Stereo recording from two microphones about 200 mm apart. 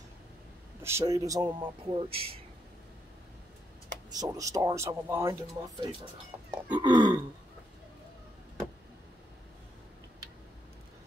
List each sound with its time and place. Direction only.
0.8 s speech: 15° right (ahead or behind)
4.2 s speech: 15° right (ahead or behind)
6.3 s a sound: 15° right (ahead or behind)
6.7 s speech: 20° right (ahead or behind)